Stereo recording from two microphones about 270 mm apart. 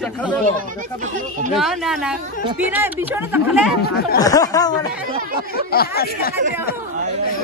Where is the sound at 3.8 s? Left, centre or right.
Left.